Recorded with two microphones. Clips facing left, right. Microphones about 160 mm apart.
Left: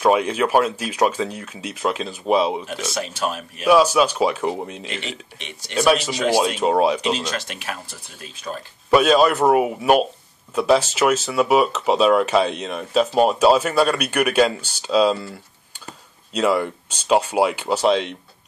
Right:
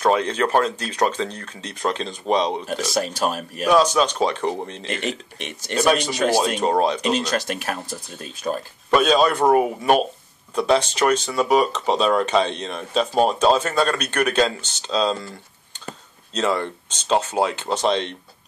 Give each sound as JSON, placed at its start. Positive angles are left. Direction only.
{"t": 0.0, "sound": "speech", "side_deg": 10}
{"t": 2.6, "sound": "speech", "side_deg": -35}
{"t": 3.6, "sound": "speech", "side_deg": 10}
{"t": 4.8, "sound": "speech", "side_deg": -50}
{"t": 5.8, "sound": "speech", "side_deg": 5}
{"t": 7.1, "sound": "speech", "side_deg": -45}
{"t": 8.9, "sound": "speech", "side_deg": 5}
{"t": 16.3, "sound": "speech", "side_deg": 10}